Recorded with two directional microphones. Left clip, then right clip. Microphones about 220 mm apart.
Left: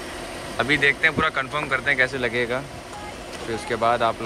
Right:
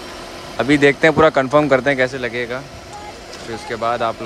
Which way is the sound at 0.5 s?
20° right (ahead or behind).